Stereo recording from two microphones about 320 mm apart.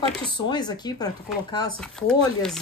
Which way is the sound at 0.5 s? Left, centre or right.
Centre.